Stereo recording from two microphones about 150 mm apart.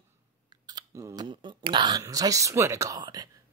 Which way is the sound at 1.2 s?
30° right (ahead or behind).